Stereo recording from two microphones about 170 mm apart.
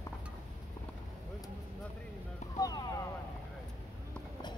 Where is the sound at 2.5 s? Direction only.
20° left (ahead or behind).